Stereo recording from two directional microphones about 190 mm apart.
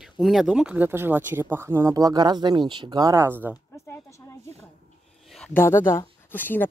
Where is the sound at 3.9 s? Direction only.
15° left (ahead or behind).